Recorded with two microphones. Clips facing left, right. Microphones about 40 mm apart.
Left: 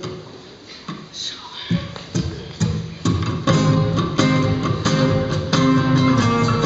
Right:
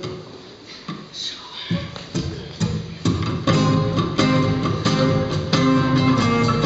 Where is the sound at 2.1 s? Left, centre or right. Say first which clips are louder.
Left 2 dB; centre.